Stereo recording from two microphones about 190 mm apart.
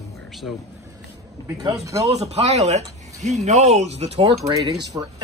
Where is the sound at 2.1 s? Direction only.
35° right (ahead or behind).